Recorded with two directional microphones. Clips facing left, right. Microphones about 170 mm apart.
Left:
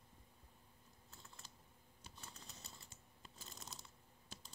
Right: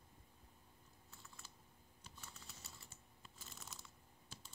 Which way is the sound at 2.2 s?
35° left (ahead or behind).